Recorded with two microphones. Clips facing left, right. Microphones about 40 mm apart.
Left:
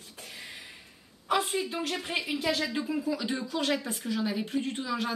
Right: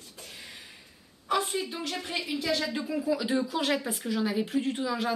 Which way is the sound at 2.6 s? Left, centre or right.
Centre.